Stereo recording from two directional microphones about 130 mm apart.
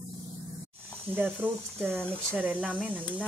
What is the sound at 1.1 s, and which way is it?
Speech, 15° right (ahead or behind).